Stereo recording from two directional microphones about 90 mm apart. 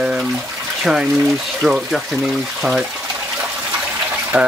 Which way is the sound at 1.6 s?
Centre (ahead or behind).